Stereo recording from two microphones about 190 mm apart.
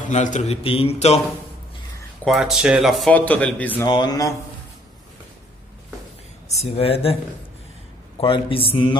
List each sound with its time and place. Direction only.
0.1 s a man's voice: 40° left (ahead or behind)
2.2 s a man's voice: centre (ahead or behind)
3.8 s speech: 20° left (ahead or behind)
6.6 s a man's voice: 30° left (ahead or behind)
8.2 s speech: 30° left (ahead or behind)